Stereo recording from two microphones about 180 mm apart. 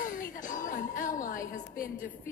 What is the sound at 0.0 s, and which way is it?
Music, 45° left (ahead or behind).